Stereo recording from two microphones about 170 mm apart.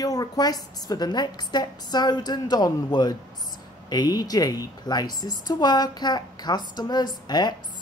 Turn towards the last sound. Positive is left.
turn(degrees=25)  # may be behind; listen again after turning